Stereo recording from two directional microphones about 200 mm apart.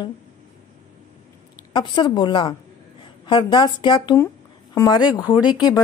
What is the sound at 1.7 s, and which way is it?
A woman's voice, 20° left (ahead or behind).